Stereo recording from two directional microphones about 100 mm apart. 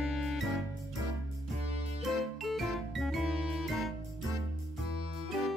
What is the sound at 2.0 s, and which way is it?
Music, centre (ahead or behind).